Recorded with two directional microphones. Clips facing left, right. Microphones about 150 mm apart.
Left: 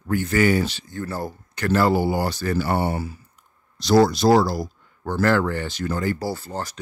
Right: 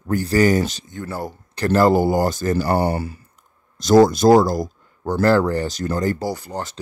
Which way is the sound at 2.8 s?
65° right (ahead or behind).